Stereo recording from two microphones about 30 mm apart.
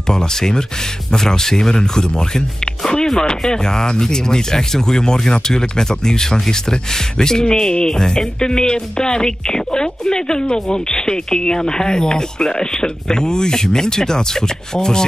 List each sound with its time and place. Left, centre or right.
0.0 s speech: centre